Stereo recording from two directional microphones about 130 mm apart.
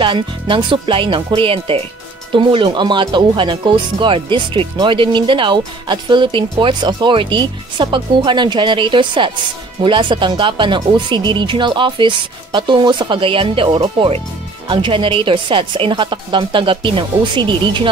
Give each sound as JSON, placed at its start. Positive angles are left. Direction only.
{"t": 0.0, "sound": "speech", "side_deg": -40}